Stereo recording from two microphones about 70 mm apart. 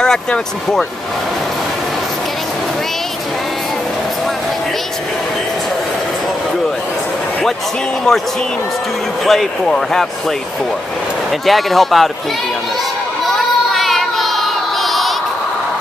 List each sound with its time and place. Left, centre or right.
0.0 s speech: centre
8.1 s speech: centre
11.4 s speech: centre
13.7 s child singing: centre